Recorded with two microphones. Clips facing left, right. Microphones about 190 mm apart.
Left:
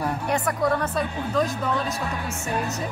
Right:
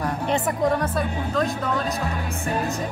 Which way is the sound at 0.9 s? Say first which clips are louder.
Even; centre (ahead or behind).